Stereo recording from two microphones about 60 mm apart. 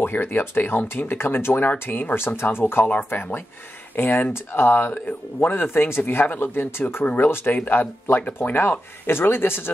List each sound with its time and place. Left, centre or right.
0.0 s speech: left